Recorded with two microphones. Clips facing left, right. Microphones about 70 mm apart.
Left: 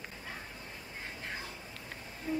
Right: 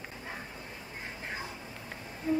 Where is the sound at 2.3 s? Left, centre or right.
Right.